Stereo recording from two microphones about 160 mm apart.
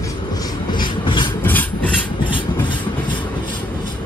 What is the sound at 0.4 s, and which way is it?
Rub, 30° left (ahead or behind).